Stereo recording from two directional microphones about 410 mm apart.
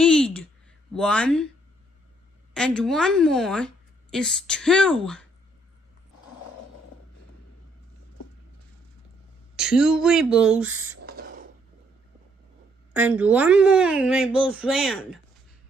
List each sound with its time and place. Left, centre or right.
0.0 s a sound: centre
0.9 s a woman's voice: centre
2.5 s a woman's voice: centre
9.6 s a woman's voice: centre
10.9 s a sound: right
12.9 s a woman's voice: centre